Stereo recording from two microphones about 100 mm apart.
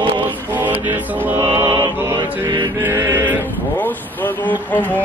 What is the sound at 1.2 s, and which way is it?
Mantra, 20° right (ahead or behind).